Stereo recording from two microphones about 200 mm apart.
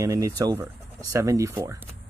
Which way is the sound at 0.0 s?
15° right (ahead or behind).